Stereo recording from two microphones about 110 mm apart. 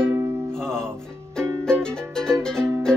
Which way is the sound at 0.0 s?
25° right (ahead or behind).